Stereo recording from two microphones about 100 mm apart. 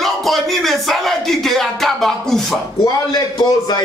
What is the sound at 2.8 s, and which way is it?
Speech, 45° left (ahead or behind).